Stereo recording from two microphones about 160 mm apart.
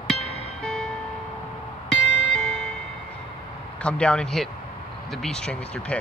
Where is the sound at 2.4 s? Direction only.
5° left (ahead or behind).